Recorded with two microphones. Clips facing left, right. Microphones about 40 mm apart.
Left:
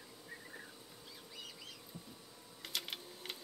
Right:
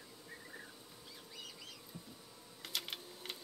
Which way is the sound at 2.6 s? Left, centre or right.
Centre.